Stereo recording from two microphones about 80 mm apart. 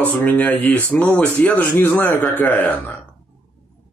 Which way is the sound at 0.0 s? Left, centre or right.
Centre.